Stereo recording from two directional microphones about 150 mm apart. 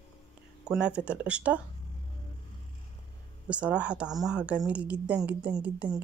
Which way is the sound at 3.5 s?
10° right (ahead or behind).